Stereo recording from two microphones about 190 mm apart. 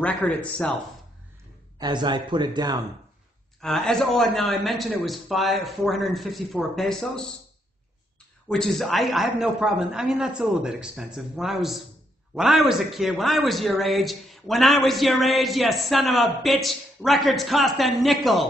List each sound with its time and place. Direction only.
0.0 s speech: 10° left (ahead or behind)
1.8 s a man's voice: 25° right (ahead or behind)
3.6 s speech: 5° left (ahead or behind)
8.5 s speech: centre (ahead or behind)